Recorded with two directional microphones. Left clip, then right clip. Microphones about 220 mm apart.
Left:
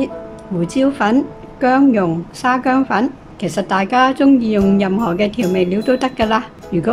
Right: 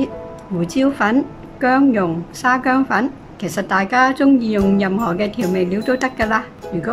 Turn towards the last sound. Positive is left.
turn(degrees=5)  # may be behind; listen again after turning